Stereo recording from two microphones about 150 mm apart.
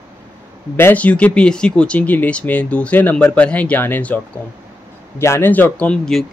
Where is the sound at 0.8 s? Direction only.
10° left (ahead or behind).